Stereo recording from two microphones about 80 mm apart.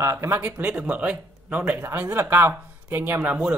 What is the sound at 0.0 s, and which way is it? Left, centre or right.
Speech, right.